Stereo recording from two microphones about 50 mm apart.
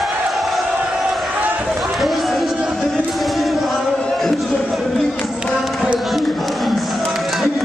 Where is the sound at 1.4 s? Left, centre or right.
Right.